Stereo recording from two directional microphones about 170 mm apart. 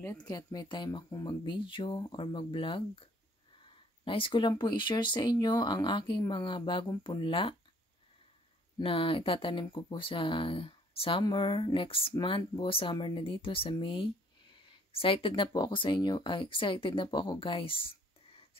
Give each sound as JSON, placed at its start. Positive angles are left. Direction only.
{"t": 0.0, "sound": "speech", "side_deg": 20}
{"t": 8.7, "sound": "speech", "side_deg": 30}